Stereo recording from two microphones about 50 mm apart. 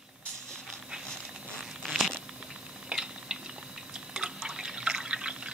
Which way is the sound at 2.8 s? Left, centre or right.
Centre.